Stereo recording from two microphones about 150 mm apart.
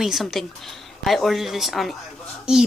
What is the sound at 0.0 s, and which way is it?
A woman's voice, centre (ahead or behind).